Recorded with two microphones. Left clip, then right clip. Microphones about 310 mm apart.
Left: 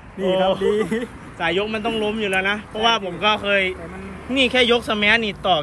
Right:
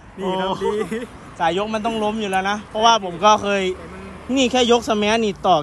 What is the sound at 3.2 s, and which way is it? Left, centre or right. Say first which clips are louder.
Speech: right 1 dB; centre.